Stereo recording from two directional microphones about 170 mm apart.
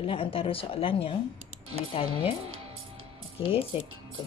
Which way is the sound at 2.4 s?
35° right (ahead or behind).